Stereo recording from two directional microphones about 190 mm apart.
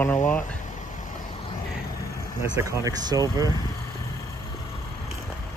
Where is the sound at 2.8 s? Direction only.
20° right (ahead or behind).